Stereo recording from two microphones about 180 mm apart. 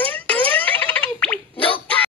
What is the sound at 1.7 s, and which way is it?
Dog, 10° left (ahead or behind).